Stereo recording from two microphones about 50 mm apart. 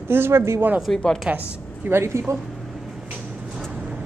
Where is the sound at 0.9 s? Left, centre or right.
Centre.